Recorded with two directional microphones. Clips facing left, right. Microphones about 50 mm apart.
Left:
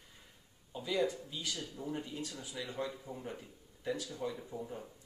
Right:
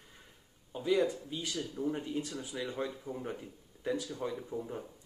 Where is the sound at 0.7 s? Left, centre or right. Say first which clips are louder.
Right 4 dB; centre.